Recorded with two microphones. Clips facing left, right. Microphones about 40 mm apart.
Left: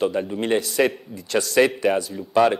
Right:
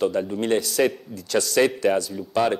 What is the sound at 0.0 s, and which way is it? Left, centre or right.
A man's voice, centre.